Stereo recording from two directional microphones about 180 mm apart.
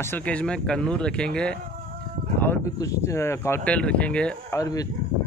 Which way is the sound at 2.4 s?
15° left (ahead or behind).